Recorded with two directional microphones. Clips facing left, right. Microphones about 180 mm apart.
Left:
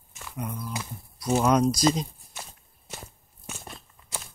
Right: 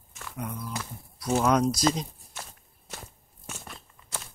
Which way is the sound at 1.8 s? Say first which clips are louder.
Left 2 dB; 15° left (ahead or behind).